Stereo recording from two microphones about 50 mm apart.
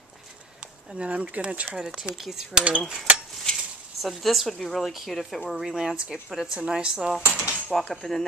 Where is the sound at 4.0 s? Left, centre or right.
Centre.